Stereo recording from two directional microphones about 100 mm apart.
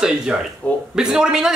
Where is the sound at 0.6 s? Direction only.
10° left (ahead or behind).